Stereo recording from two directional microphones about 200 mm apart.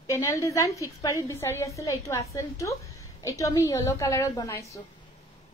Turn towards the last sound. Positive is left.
turn(degrees=15)  # may be behind; listen again after turning